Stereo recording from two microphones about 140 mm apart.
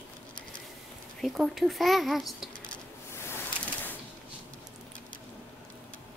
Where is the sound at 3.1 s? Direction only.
20° left (ahead or behind).